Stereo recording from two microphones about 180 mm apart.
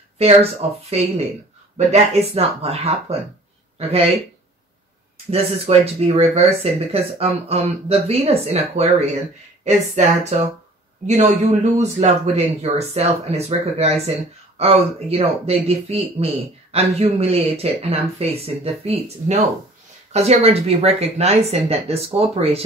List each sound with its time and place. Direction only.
0.2 s speech: 35° right (ahead or behind)
5.3 s speech: 35° right (ahead or behind)
11.1 s speech: 40° right (ahead or behind)